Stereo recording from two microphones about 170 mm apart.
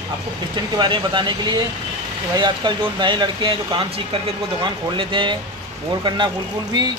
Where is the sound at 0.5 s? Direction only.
25° right (ahead or behind).